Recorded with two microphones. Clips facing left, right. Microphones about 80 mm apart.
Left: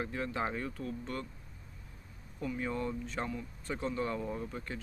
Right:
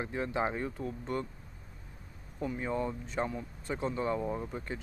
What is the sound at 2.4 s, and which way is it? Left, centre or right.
Speech, right.